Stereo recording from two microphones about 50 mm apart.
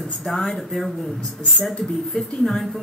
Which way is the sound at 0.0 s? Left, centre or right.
Centre.